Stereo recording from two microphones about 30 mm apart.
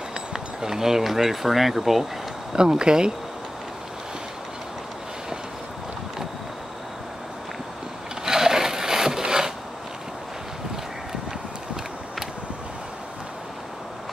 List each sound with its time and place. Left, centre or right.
0.3 s speech: centre
2.5 s speech: right
8.3 s wood: centre